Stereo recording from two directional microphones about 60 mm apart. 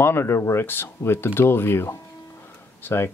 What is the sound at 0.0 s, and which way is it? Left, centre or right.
Speech, left.